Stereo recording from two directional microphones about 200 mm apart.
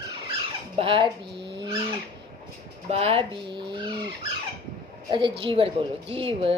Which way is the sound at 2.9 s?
30° right (ahead or behind).